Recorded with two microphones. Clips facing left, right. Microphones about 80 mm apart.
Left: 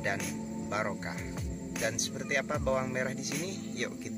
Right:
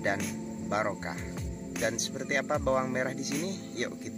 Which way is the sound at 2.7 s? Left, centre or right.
Right.